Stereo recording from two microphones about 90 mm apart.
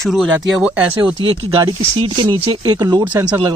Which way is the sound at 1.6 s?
65° right (ahead or behind).